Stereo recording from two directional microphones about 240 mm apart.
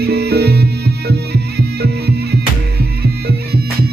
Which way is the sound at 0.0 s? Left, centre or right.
Right.